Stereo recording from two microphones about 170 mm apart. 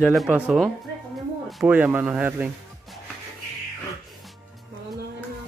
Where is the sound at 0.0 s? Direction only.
Centre (ahead or behind).